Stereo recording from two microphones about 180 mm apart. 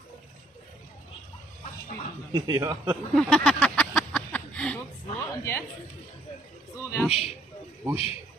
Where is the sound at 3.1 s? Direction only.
5° left (ahead or behind).